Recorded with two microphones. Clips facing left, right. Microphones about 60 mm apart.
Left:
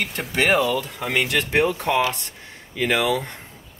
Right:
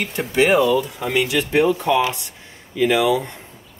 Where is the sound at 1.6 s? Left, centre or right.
Left.